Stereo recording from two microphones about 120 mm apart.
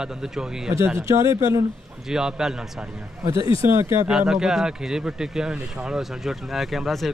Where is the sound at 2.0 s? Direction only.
5° right (ahead or behind).